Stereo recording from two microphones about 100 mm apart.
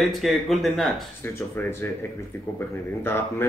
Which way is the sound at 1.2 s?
25° left (ahead or behind).